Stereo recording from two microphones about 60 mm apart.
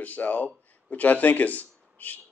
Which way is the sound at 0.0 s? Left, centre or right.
Left.